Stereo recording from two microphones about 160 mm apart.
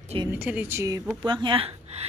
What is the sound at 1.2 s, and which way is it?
Speech, 30° right (ahead or behind).